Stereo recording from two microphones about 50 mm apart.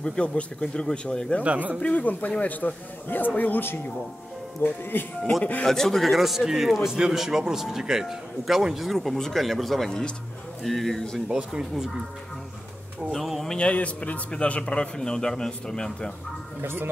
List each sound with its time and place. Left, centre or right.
0.0 s a man's voice: centre
1.4 s speech: right
1.8 s a man's voice: left
4.6 s speech: left
5.7 s a man's voice: centre
9.8 s a man's voice: centre
10.6 s a man's voice: centre
11.2 s speech: centre
13.1 s a man's voice: centre
13.6 s speech: left
14.3 s a man's voice: centre
16.6 s speech: right